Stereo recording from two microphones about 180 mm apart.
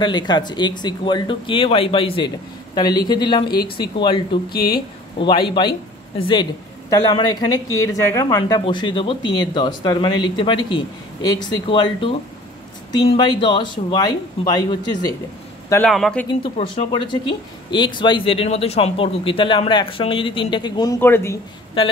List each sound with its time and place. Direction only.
0.0 s speech: 25° left (ahead or behind)
4.5 s speech: 55° left (ahead or behind)
5.2 s speech: 25° left (ahead or behind)
6.9 s speech: 20° left (ahead or behind)
15.9 s speech: 5° left (ahead or behind)
16.5 s speech: 30° left (ahead or behind); by 21.4 s 15° left (ahead or behind)